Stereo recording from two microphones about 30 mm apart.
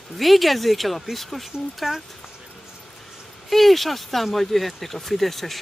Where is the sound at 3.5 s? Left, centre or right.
Centre.